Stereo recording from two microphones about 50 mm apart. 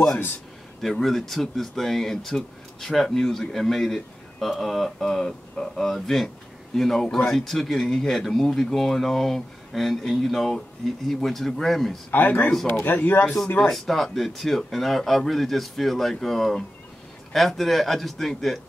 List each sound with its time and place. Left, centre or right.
0.8 s speech: centre
12.1 s speech: left
13.6 s speech: centre